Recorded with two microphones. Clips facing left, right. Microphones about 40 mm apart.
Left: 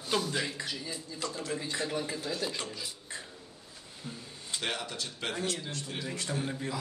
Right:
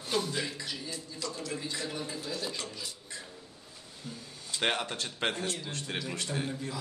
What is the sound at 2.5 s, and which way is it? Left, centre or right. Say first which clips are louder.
Speech: left 1 dB; left.